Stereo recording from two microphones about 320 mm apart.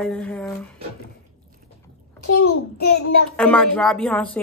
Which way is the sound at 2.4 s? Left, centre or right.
Left.